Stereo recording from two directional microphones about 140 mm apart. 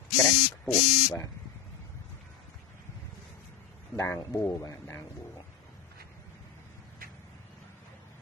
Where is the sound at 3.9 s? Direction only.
20° left (ahead or behind).